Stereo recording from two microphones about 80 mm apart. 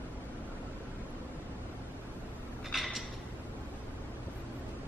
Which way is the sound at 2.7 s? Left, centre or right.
Centre.